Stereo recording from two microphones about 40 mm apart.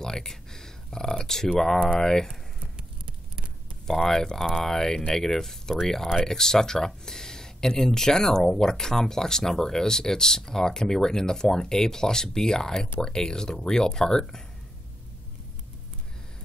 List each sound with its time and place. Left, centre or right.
0.0 s speech: centre
3.9 s speech: centre